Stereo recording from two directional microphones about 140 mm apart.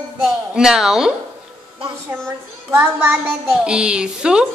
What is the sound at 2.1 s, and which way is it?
A child's voice, 15° right (ahead or behind).